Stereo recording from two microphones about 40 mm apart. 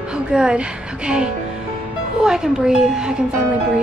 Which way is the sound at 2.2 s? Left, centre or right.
Centre.